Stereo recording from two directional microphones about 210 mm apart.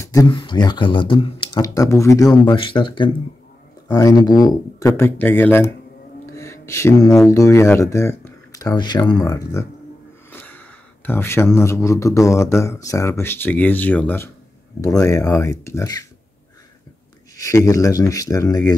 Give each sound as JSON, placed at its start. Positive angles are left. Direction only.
{"t": 0.0, "sound": "a man's voice", "side_deg": 15}
{"t": 10.3, "sound": "gasp", "side_deg": 10}
{"t": 11.1, "sound": "a man's voice", "side_deg": 10}
{"t": 17.4, "sound": "a man's voice", "side_deg": 15}